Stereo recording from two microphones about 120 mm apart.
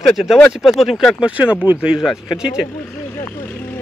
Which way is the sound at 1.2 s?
15° right (ahead or behind).